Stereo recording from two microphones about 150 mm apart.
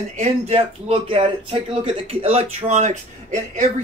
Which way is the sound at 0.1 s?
45° right (ahead or behind).